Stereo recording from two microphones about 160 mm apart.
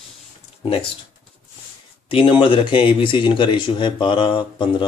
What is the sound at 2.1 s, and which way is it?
Speech, 35° left (ahead or behind).